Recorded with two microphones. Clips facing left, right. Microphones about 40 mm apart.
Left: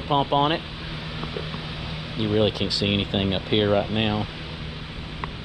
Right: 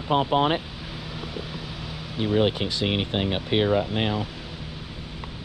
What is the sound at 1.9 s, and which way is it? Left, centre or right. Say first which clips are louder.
Vehicle: even; left.